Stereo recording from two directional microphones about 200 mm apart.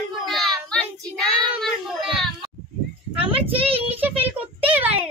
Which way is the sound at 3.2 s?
30° right (ahead or behind).